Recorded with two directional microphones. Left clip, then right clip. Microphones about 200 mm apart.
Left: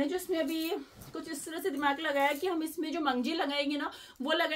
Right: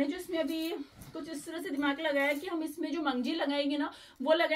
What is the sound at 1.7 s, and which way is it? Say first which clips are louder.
A woman's voice: even; 25° left (ahead or behind).